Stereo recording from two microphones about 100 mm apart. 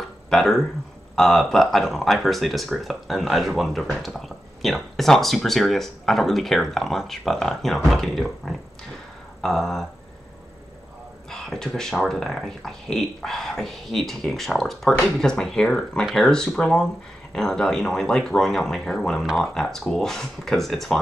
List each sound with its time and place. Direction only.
0.3 s speech: 5° left (ahead or behind)
11.2 s speech: 5° left (ahead or behind)